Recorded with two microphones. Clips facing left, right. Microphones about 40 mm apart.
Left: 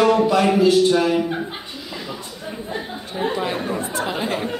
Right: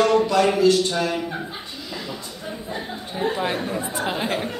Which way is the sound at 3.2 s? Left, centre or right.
Left.